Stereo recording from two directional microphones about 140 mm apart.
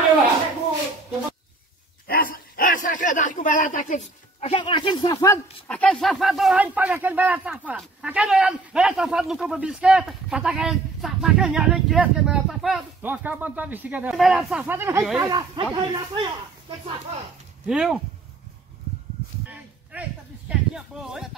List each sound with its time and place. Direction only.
2.0 s bow-wow: 90° left; by 4.5 s 65° left (ahead or behind)
4.5 s speech: 35° left (ahead or behind)
5.7 s speech: 10° left (ahead or behind)
6.6 s speech: 10° right (ahead or behind)
13.0 s speech: 10° right (ahead or behind)
14.1 s speech: centre (ahead or behind); by 15.0 s 15° right (ahead or behind)
15.2 s speech: 30° right (ahead or behind)
17.6 s speech: 5° right (ahead or behind)
19.9 s a sound: 10° right (ahead or behind)